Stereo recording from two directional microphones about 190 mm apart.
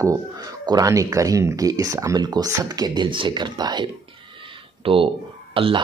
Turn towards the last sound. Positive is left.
turn(degrees=-30)  # may be behind; listen again after turning